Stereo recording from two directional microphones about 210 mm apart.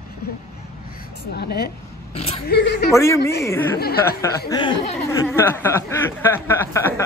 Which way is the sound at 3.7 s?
45° left (ahead or behind).